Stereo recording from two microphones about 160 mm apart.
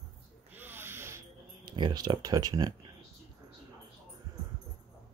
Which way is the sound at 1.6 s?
25° right (ahead or behind).